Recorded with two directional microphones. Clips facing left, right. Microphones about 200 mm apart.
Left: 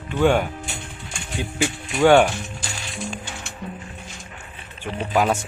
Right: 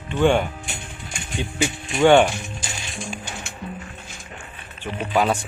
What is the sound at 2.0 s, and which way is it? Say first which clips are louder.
Speech: even; 5° left (ahead or behind).